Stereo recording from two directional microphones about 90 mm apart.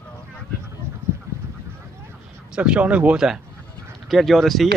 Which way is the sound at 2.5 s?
10° right (ahead or behind).